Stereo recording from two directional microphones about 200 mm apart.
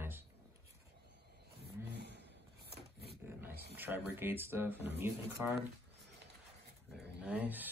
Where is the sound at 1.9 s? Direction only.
60° right (ahead or behind).